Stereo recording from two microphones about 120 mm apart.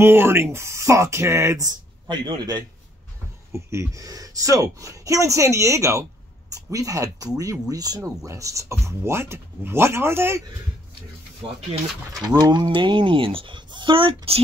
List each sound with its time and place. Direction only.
0.0 s speech: 20° right (ahead or behind); by 2.6 s 35° right (ahead or behind)
3.5 s speech: 25° right (ahead or behind)
12.4 s speech: 35° right (ahead or behind)